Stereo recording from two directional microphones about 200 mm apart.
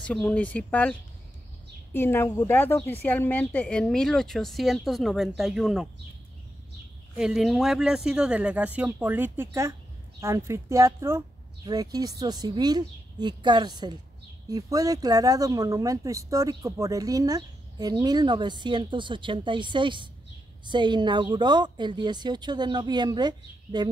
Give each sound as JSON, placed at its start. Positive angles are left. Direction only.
{"t": 0.0, "sound": "speech", "side_deg": 5}
{"t": 2.0, "sound": "a woman's voice", "side_deg": 10}
{"t": 7.2, "sound": "a woman's voice", "side_deg": -5}